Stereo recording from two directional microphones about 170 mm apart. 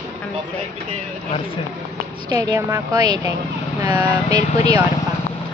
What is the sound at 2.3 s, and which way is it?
A woman's voice, 20° right (ahead or behind).